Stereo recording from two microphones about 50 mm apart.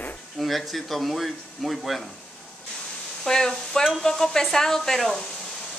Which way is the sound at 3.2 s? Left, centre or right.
Centre.